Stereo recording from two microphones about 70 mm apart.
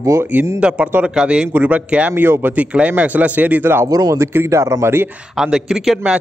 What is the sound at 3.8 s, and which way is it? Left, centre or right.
Speech, right.